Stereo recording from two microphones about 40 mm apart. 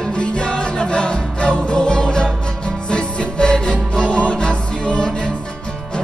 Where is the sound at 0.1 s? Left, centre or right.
Left.